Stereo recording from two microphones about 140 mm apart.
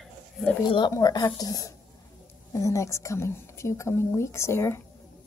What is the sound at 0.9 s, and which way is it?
Speech, 30° left (ahead or behind).